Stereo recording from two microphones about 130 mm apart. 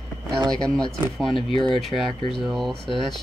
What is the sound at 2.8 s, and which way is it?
Speech, 35° left (ahead or behind).